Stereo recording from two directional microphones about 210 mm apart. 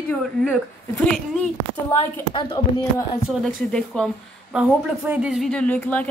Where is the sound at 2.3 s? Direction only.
20° left (ahead or behind).